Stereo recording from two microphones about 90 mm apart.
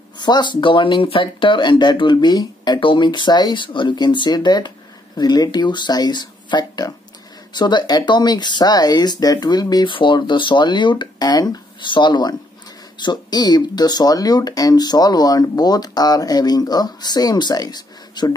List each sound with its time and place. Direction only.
0.2 s speech: 55° left (ahead or behind)
9.8 s speech: 65° left (ahead or behind); by 11.6 s 45° left (ahead or behind)
11.8 s speech: 60° left (ahead or behind)